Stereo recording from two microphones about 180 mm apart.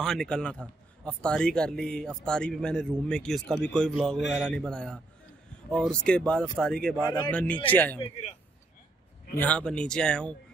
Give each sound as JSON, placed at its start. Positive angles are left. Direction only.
{"t": 0.0, "sound": "a man's voice", "side_deg": 0}
{"t": 8.0, "sound": "speech", "side_deg": 35}
{"t": 9.3, "sound": "a man's voice", "side_deg": 10}